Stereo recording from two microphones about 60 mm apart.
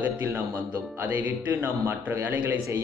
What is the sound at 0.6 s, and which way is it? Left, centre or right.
A man's voice, right.